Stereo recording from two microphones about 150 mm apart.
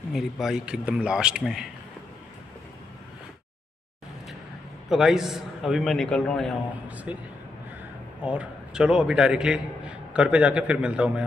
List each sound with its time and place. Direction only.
0.1 s a man's voice: centre (ahead or behind)
4.8 s a man's voice: centre (ahead or behind)
7.1 s a man's voice: 10° right (ahead or behind)